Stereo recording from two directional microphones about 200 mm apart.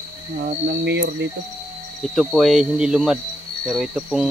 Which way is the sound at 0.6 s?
60° right (ahead or behind).